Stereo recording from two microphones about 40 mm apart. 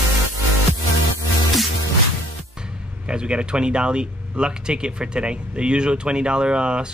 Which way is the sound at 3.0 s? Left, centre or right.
Right.